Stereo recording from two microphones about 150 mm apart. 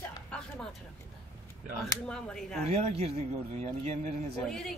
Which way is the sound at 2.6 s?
45° right (ahead or behind).